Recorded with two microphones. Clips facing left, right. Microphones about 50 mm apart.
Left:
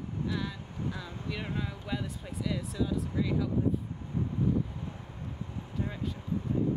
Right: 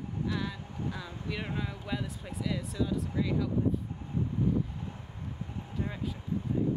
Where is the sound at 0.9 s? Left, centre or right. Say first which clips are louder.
Even; centre.